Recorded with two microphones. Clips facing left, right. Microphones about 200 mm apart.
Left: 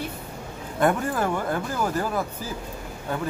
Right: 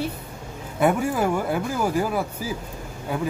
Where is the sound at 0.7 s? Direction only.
10° right (ahead or behind).